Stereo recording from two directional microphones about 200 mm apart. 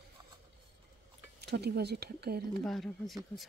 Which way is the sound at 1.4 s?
55° right (ahead or behind).